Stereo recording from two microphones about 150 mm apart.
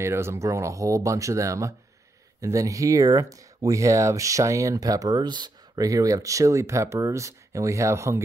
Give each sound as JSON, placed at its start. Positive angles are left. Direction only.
{"t": 0.0, "sound": "speech", "side_deg": -15}